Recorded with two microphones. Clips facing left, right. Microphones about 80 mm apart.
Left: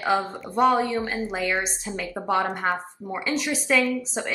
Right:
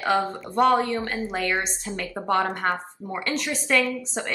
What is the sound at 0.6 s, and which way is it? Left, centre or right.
A woman's voice, centre.